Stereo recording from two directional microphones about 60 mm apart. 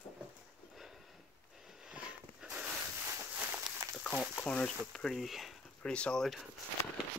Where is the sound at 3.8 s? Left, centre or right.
Right.